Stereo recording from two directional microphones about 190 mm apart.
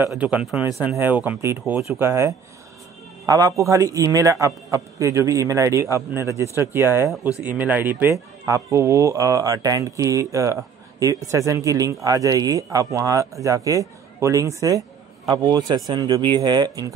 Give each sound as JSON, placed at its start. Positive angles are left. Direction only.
{"t": 0.0, "sound": "speech", "side_deg": -5}